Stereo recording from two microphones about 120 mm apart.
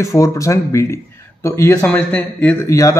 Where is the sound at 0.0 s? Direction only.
25° left (ahead or behind).